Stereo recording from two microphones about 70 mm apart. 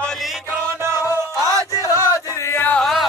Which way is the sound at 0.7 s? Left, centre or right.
Right.